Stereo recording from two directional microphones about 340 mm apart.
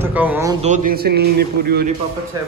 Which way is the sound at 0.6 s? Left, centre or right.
Right.